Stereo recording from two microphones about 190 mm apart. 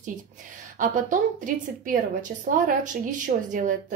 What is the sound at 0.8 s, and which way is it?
A woman's voice, 45° right (ahead or behind).